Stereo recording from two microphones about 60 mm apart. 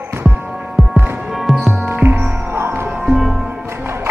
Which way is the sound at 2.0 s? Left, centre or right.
Right.